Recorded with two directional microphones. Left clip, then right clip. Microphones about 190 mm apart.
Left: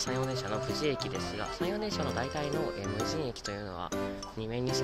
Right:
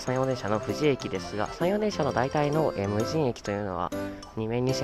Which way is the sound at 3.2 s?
40° right (ahead or behind).